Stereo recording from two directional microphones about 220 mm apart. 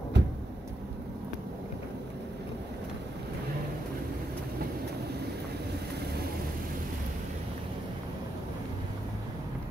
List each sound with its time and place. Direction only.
0.2 s vehicle: 50° right (ahead or behind)